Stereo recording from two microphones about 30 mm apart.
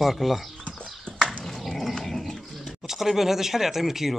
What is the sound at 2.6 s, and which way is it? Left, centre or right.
Speech, centre.